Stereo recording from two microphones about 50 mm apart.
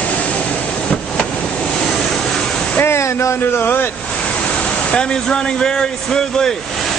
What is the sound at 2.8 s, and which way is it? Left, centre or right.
Speech, left.